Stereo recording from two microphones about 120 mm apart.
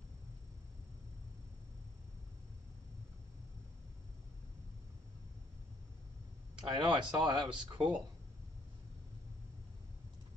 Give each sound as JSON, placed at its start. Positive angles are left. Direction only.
{"t": 6.5, "sound": "speech", "side_deg": -40}